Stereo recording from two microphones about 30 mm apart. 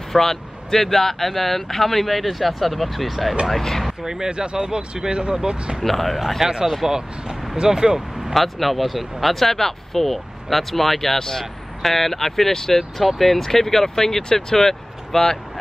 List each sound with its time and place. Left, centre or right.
0.1 s speech: centre
4.0 s speech: centre
4.3 s speech: right
5.9 s speech: centre
6.9 s speech: right
8.2 s speech: centre